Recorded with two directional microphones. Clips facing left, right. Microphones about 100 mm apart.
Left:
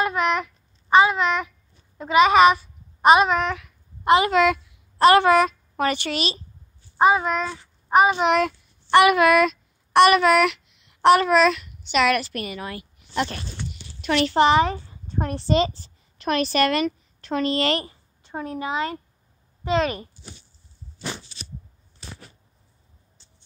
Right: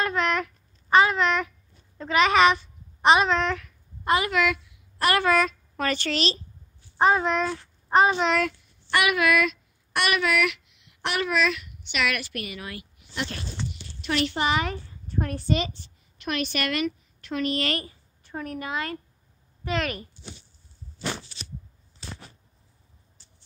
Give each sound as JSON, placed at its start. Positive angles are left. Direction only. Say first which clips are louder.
{"t": 0.0, "sound": "child singing", "louder": "left 3 dB", "side_deg": 10}
{"t": 2.0, "sound": "a child's voice", "louder": "left 5 dB", "side_deg": 15}
{"t": 8.9, "sound": "a woman's voice", "louder": "left 7 dB", "side_deg": 35}